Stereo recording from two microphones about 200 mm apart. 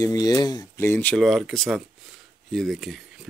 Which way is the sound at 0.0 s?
15° left (ahead or behind).